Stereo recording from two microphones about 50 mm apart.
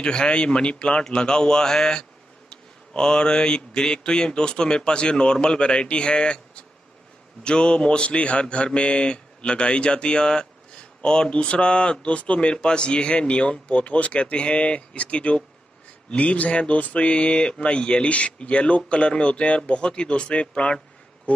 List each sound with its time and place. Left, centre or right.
0.0 s speech: centre